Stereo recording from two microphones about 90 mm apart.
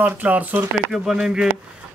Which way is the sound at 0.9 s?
5° right (ahead or behind).